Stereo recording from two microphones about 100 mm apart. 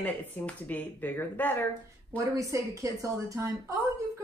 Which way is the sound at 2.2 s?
35° right (ahead or behind).